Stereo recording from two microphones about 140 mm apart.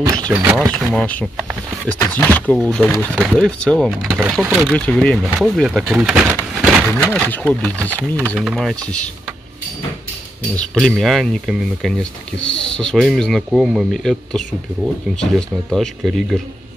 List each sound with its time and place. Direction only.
0.0 s speech: 25° right (ahead or behind)
0.7 s speech: 5° left (ahead or behind)
4.7 s speech: 10° left (ahead or behind); by 6.3 s 10° right (ahead or behind)
6.6 s a sound: 5° right (ahead or behind)
7.1 s speech: 10° left (ahead or behind)
8.4 s speech: 5° right (ahead or behind)
10.5 s speech: 5° left (ahead or behind)